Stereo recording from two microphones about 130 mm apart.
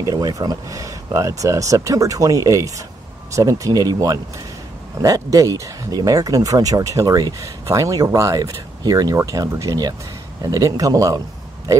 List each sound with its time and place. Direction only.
0.0 s a man's voice: 30° right (ahead or behind)